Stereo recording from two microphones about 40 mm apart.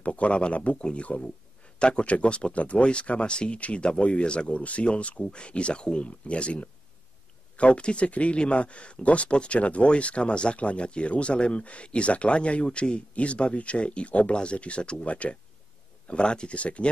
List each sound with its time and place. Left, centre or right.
0.0 s speech: left